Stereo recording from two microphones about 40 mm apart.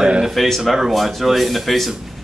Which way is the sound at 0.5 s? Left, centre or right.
Centre.